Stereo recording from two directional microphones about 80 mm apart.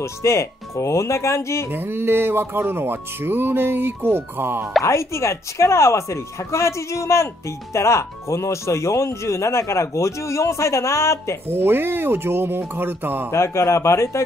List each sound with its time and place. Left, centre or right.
0.0 s speech: left
1.7 s speech: right
4.8 s speech: left
11.4 s speech: right
13.3 s speech: left